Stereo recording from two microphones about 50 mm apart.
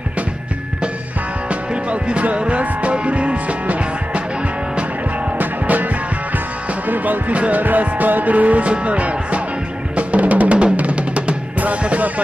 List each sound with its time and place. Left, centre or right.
1.5 s music: right
5.4 s music: right
6.9 s speech: right
7.6 s music: right
9.9 s drum: right